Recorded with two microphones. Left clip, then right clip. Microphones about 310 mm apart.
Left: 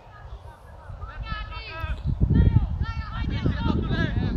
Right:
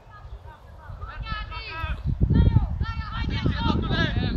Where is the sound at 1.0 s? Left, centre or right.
Centre.